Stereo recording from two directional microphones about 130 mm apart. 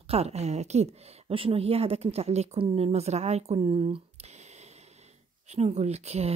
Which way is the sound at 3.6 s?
45° right (ahead or behind).